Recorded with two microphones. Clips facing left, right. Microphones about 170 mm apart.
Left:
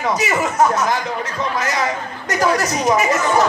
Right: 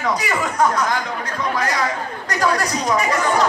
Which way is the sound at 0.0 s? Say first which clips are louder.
Left 2 dB; 25° left (ahead or behind).